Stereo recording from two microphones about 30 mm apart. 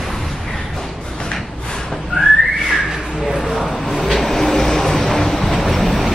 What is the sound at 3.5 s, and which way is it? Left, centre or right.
Vehicle, centre.